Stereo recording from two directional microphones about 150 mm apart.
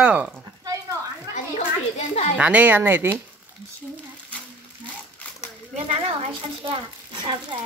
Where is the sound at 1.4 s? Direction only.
50° left (ahead or behind).